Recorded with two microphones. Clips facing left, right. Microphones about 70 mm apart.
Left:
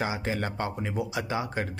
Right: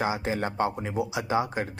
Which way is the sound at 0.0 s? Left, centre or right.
Right.